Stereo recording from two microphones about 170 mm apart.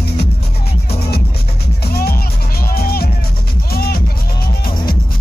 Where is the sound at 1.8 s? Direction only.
65° left (ahead or behind).